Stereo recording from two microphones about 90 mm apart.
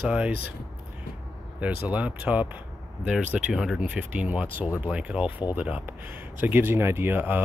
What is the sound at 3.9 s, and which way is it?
Speech, 15° right (ahead or behind).